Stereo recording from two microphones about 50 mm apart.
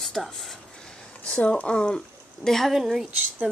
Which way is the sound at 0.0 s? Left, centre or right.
Centre.